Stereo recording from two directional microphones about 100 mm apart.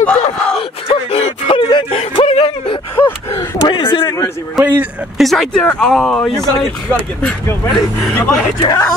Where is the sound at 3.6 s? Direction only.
50° left (ahead or behind).